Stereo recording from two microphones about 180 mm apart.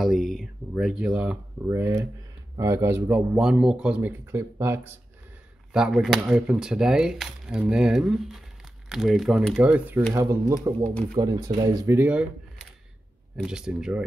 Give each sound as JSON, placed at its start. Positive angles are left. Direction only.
{"t": 0.0, "sound": "speech", "side_deg": 0}
{"t": 3.3, "sound": "speech", "side_deg": -5}
{"t": 5.7, "sound": "speech", "side_deg": -5}
{"t": 13.4, "sound": "speech", "side_deg": -5}